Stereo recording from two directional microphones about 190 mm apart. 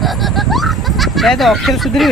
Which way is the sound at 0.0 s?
Centre (ahead or behind).